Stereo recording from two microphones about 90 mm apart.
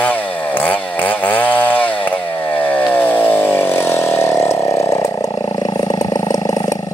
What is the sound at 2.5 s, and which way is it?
Chainsaw, 20° left (ahead or behind).